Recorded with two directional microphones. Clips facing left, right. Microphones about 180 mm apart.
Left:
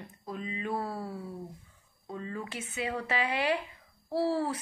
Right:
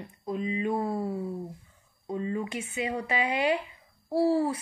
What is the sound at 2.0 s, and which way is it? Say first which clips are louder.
Speech: right 7 dB; 15° right (ahead or behind).